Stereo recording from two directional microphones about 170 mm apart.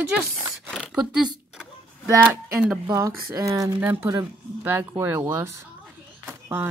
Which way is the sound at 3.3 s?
20° right (ahead or behind).